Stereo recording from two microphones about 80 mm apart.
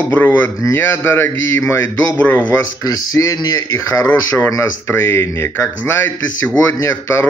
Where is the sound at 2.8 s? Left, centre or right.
Left.